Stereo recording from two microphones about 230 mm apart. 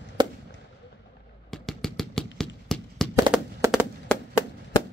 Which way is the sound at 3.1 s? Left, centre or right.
Centre.